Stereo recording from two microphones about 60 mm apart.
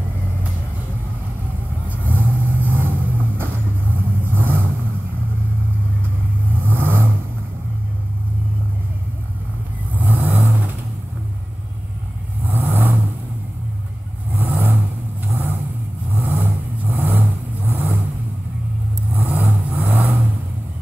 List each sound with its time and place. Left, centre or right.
1.9 s vehicle: right
6.6 s vehicle: right
9.9 s vehicle: right
12.4 s vehicle: right
14.3 s vehicle: right
19.1 s vehicle: right